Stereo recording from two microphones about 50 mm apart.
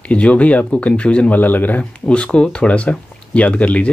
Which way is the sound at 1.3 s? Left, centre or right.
Left.